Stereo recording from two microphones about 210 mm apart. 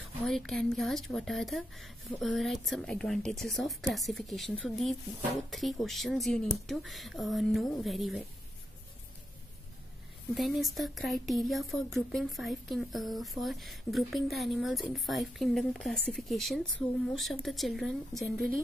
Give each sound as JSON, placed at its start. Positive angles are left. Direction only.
{"t": 0.2, "sound": "a woman's voice", "side_deg": 0}
{"t": 10.3, "sound": "a woman's voice", "side_deg": 0}